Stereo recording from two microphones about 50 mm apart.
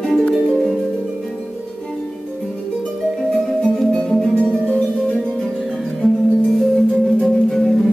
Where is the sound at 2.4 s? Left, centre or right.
Centre.